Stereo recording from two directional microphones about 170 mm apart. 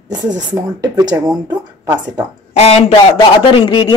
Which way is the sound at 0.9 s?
20° right (ahead or behind).